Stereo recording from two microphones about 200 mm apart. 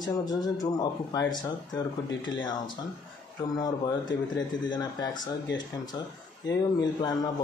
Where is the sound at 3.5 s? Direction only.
20° left (ahead or behind).